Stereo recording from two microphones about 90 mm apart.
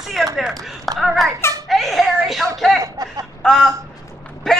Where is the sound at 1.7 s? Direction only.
Centre (ahead or behind).